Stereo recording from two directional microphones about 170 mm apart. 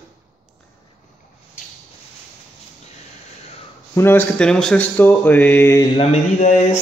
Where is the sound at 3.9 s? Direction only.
15° left (ahead or behind).